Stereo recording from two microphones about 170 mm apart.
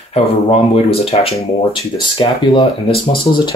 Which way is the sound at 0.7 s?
35° left (ahead or behind).